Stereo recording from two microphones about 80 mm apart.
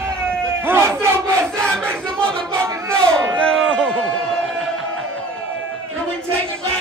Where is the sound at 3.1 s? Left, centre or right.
Centre.